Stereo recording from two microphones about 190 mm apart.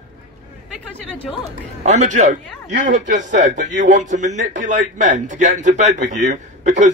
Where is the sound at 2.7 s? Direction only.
70° right (ahead or behind).